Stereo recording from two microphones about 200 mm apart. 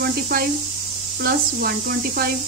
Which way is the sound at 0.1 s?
50° right (ahead or behind).